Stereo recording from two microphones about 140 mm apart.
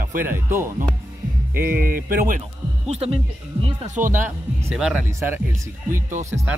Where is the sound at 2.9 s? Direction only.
45° right (ahead or behind).